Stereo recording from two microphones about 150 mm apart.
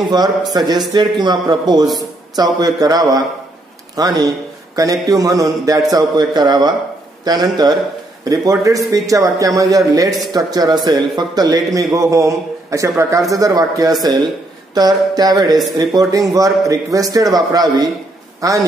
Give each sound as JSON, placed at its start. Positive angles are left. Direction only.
{"t": 0.5, "sound": "a man's voice", "side_deg": -25}